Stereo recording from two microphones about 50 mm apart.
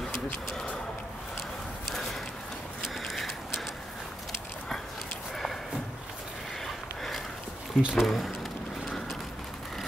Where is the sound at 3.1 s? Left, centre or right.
Centre.